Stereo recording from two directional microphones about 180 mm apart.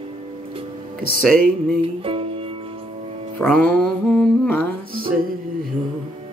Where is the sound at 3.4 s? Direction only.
5° left (ahead or behind).